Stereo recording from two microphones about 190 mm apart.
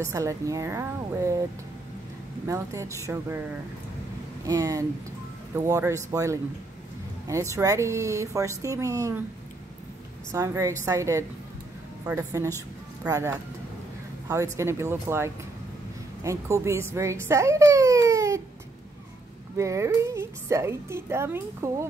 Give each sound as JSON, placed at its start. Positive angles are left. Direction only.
{"t": 0.0, "sound": "a woman's voice", "side_deg": -15}
{"t": 2.4, "sound": "a woman's voice", "side_deg": -15}
{"t": 4.5, "sound": "a woman's voice", "side_deg": -15}
{"t": 10.3, "sound": "a woman's voice", "side_deg": -15}
{"t": 19.5, "sound": "a woman's voice", "side_deg": -15}